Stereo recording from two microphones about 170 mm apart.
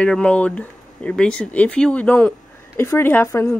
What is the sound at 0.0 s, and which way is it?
A woman's voice, 5° left (ahead or behind).